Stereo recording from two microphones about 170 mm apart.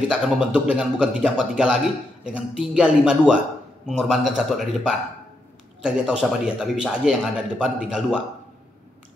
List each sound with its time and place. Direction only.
0.1 s a man's voice: 5° right (ahead or behind)